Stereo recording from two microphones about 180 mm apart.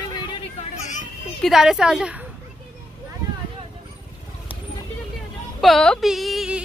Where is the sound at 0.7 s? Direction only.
40° left (ahead or behind).